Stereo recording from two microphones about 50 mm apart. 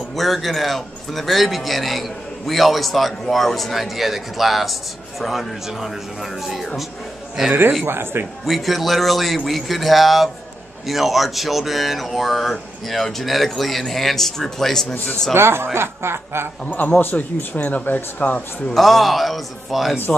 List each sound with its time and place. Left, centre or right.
0.1 s a man's voice: centre
7.8 s a man's voice: right
8.5 s a man's voice: centre
15.3 s speech: right
16.6 s a man's voice: left
17.0 s speech: left
18.7 s a man's voice: centre